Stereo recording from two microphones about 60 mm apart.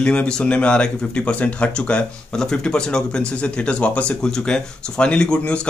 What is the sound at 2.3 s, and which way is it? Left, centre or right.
Speech, centre.